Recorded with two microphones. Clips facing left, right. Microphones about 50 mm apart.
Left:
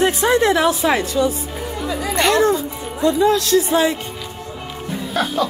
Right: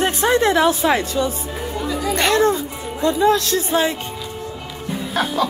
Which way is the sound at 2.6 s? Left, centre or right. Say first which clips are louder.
Left 2 dB; right.